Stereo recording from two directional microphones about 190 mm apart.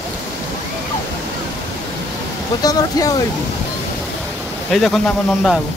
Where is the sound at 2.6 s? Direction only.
20° left (ahead or behind).